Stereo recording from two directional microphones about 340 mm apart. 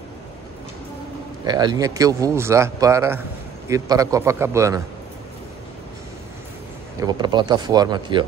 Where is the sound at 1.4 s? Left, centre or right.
Centre.